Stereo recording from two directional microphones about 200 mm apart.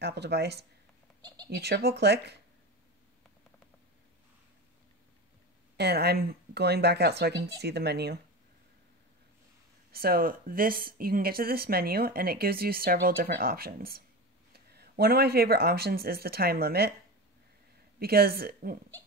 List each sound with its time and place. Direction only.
0.0 s speech: 55° right (ahead or behind)
5.8 s speech: 55° right (ahead or behind)
9.9 s speech: 50° right (ahead or behind)
17.9 s speech: 50° right (ahead or behind)